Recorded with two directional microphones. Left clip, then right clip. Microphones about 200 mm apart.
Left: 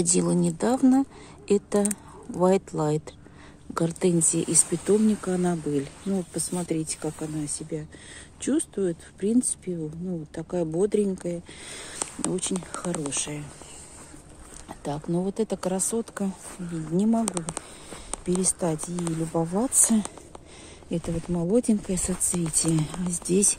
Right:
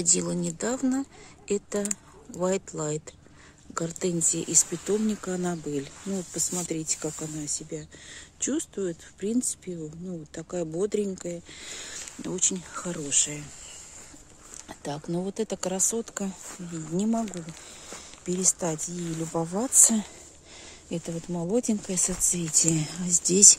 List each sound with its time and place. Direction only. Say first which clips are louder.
0.0 s speech: left 3 dB; 15° left (ahead or behind); by 13.4 s 10° right (ahead or behind)
14.7 s speech: left 3 dB; 10° right (ahead or behind)
18.2 s speech: left 1 dB; centre (ahead or behind); by 23.5 s 20° right (ahead or behind)